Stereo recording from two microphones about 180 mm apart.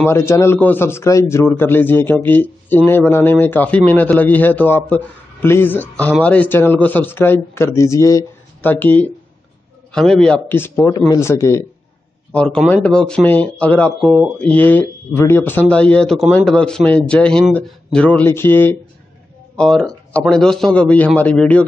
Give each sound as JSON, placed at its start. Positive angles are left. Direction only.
{"t": 0.0, "sound": "a man's voice", "side_deg": 15}
{"t": 13.9, "sound": "a man's voice", "side_deg": -5}